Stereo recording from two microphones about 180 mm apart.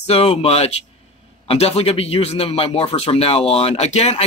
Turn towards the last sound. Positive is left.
turn(degrees=35)  # may be behind; listen again after turning